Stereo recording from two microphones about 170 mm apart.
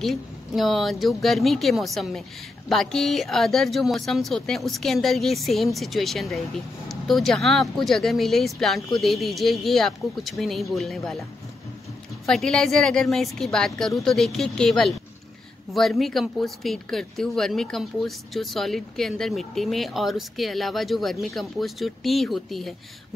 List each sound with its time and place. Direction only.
0.0 s speech: centre (ahead or behind)
12.3 s speech: 5° left (ahead or behind)